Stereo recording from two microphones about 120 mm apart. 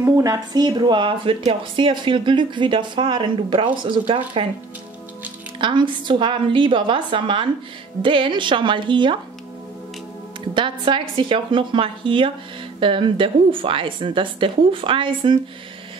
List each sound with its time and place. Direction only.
0.0 s speech: 30° right (ahead or behind); by 4.5 s 50° right (ahead or behind)
5.6 s speech: 40° right (ahead or behind)
10.5 s speech: 45° right (ahead or behind)